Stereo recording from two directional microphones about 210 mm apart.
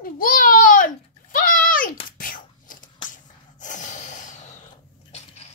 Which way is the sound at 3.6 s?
35° left (ahead or behind).